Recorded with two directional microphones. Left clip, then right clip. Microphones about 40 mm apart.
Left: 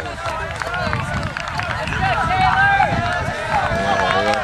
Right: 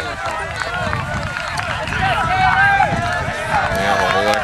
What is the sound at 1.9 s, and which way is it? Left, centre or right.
Run, centre.